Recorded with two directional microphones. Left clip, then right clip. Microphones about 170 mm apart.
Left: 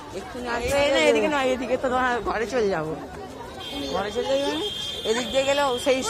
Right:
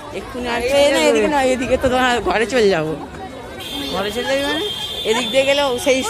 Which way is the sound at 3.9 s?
35° right (ahead or behind).